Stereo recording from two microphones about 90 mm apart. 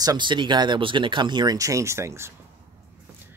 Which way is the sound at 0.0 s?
45° right (ahead or behind).